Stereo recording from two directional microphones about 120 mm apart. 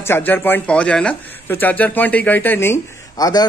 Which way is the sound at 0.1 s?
15° left (ahead or behind).